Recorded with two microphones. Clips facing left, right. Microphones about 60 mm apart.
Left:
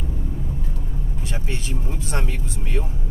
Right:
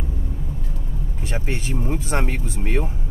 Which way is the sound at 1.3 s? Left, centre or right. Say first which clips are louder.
Right 5 dB; right.